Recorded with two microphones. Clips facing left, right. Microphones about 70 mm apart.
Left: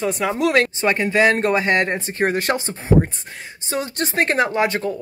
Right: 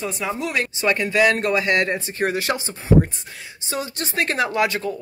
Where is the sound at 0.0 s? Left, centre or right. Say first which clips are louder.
Left 5 dB; left.